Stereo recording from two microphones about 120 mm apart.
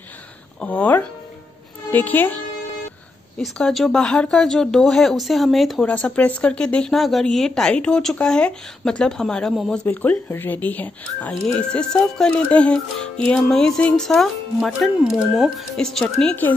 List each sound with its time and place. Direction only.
0.6 s speech: 10° left (ahead or behind)
9.8 s speech: 15° left (ahead or behind)